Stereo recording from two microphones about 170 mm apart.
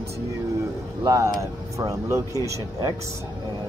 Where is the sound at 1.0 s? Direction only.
20° right (ahead or behind).